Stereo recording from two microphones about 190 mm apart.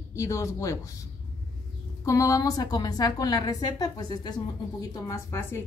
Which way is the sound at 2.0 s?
15° left (ahead or behind).